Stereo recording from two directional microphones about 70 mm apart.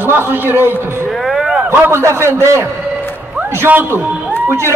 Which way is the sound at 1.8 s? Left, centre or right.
Right.